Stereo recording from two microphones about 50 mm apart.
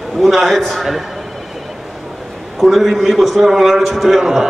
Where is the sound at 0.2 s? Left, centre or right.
Centre.